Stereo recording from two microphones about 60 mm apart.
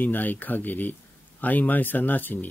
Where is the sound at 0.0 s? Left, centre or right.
Left.